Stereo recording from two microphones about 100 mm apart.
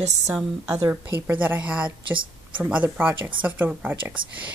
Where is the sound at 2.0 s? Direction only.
55° right (ahead or behind).